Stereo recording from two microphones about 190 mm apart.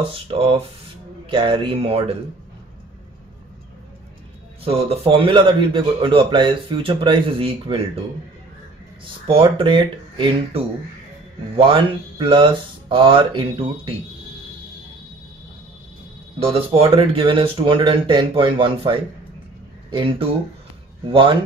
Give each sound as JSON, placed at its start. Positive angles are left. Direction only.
{"t": 0.0, "sound": "speech", "side_deg": -30}
{"t": 4.6, "sound": "speech", "side_deg": -30}
{"t": 9.0, "sound": "speech", "side_deg": -30}
{"t": 16.3, "sound": "speech", "side_deg": -30}